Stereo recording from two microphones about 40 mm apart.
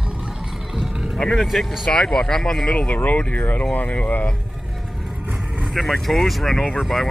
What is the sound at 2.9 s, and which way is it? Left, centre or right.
Speech, left.